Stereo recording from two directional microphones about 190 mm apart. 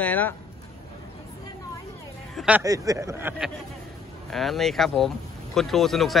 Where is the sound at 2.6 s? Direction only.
15° right (ahead or behind).